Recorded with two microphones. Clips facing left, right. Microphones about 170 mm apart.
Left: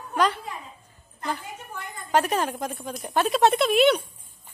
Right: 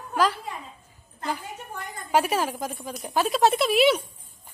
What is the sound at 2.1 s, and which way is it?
Speech, 5° right (ahead or behind).